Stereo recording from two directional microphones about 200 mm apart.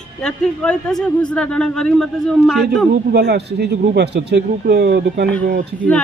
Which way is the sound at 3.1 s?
55° right (ahead or behind).